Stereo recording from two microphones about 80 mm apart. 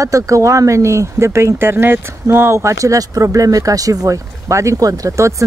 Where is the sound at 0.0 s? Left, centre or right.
Right.